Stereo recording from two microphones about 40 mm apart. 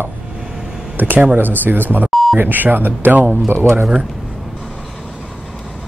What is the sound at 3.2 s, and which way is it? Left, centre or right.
Speech, centre.